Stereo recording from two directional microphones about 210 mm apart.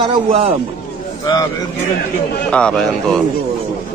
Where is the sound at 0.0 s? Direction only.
25° right (ahead or behind).